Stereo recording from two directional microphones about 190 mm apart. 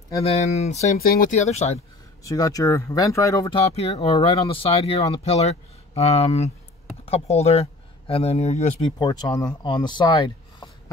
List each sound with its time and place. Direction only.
0.2 s speech: 35° left (ahead or behind)
0.9 s speech: 50° left (ahead or behind)
2.2 s speech: 20° left (ahead or behind); by 8.9 s 35° left (ahead or behind)
8.9 s speech: 20° left (ahead or behind)